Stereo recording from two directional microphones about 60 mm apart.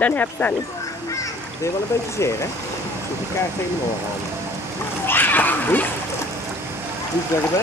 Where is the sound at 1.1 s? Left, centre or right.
Left.